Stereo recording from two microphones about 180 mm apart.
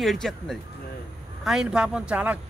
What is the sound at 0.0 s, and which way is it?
A man's voice, centre (ahead or behind).